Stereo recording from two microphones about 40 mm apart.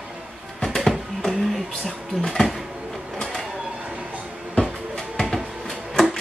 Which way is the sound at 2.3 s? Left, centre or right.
Centre.